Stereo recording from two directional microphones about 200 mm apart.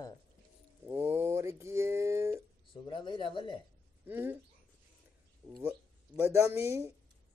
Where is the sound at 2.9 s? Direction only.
25° left (ahead or behind).